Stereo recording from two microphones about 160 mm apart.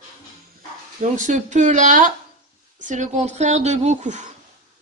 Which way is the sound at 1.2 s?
50° right (ahead or behind).